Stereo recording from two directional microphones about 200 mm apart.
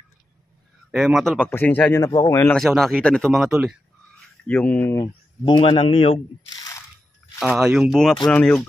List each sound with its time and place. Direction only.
0.9 s speech: centre (ahead or behind)
4.5 s speech: 10° left (ahead or behind)
5.4 s a man's voice: 25° left (ahead or behind)
7.3 s speech: 5° right (ahead or behind)